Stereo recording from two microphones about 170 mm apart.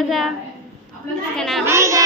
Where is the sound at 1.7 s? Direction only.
15° right (ahead or behind).